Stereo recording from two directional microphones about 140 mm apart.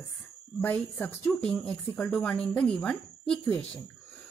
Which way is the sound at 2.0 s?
15° left (ahead or behind).